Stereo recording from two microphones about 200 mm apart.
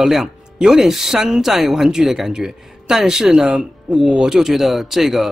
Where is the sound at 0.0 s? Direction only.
Centre (ahead or behind).